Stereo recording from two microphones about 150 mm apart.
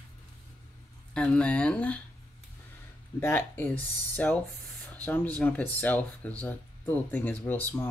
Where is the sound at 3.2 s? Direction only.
15° left (ahead or behind).